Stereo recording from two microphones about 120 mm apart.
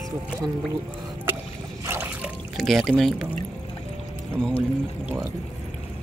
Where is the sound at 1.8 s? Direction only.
15° right (ahead or behind).